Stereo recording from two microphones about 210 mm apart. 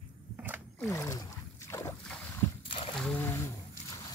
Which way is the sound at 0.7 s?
15° left (ahead or behind).